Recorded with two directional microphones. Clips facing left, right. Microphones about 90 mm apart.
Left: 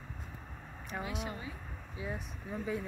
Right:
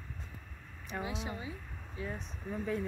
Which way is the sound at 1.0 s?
25° right (ahead or behind).